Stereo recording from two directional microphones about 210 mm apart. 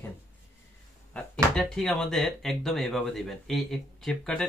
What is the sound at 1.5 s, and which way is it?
Speech, centre (ahead or behind).